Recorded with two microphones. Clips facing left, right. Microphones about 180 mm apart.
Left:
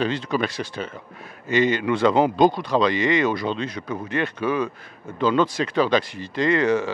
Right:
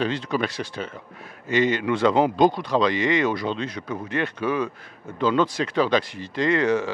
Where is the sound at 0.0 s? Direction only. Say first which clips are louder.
Left 1 dB; 10° left (ahead or behind).